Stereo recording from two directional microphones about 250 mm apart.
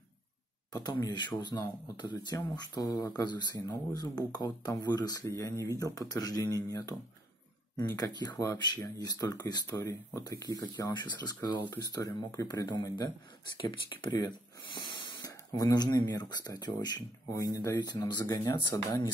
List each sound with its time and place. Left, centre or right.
0.8 s speech: centre